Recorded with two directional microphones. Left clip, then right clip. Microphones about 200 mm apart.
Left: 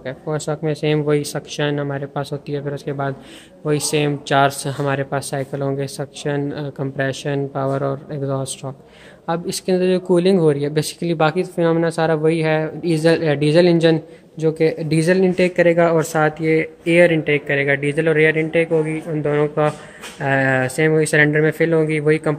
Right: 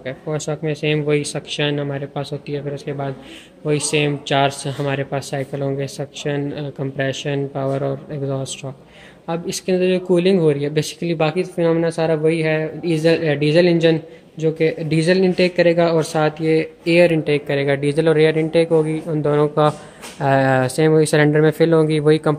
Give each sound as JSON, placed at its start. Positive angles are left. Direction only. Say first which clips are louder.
{"t": 0.0, "sound": "speech", "louder": "even", "side_deg": 0}